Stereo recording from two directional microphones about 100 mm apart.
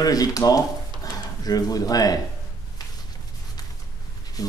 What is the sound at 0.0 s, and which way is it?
Speech, 40° left (ahead or behind).